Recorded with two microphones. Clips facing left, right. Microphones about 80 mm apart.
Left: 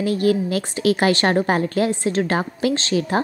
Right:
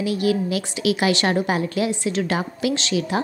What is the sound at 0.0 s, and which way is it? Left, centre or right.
A woman's voice, left.